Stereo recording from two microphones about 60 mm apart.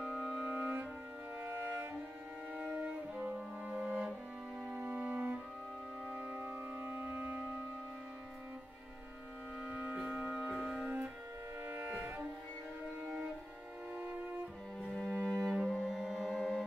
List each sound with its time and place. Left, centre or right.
0.0 s music: centre
0.6 s music: right
2.5 s music: right
6.4 s music: right
9.6 s music: right
10.6 s music: centre
11.6 s cello: right
13.0 s music: centre
13.9 s cello: right
15.0 s cello: centre
15.2 s cello: centre
15.6 s music: centre